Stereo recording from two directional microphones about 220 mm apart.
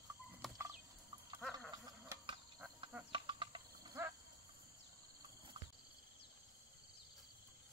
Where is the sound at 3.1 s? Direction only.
20° right (ahead or behind).